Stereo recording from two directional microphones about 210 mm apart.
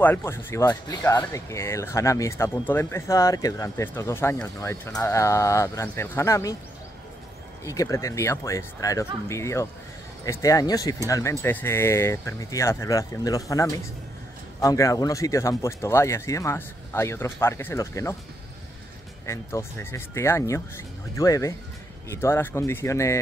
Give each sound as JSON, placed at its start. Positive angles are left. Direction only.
{"t": 0.0, "sound": "speech", "side_deg": 10}
{"t": 7.6, "sound": "speech", "side_deg": 15}
{"t": 19.2, "sound": "speech", "side_deg": 15}